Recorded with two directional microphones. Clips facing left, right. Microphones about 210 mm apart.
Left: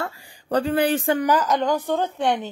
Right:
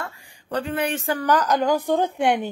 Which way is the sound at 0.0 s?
35° left (ahead or behind).